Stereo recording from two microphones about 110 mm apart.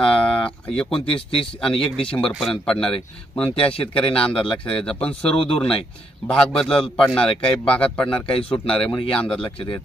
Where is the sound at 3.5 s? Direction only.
55° left (ahead or behind).